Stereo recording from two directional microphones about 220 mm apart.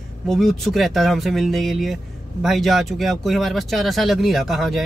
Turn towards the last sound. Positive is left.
turn(degrees=0)  # may be behind; listen again after turning